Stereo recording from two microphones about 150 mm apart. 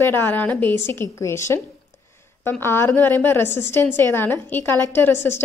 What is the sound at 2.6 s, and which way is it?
A woman's voice, 15° left (ahead or behind).